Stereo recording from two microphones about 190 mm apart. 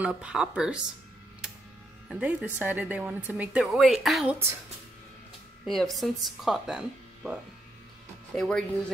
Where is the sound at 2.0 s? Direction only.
5° right (ahead or behind).